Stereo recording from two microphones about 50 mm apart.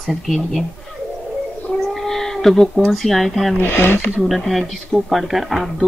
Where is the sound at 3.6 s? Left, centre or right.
Left.